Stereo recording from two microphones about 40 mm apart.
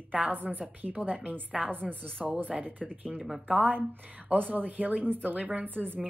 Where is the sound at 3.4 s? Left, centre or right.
Right.